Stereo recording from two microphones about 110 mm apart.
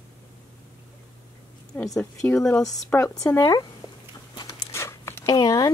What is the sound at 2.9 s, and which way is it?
Speech, 25° left (ahead or behind).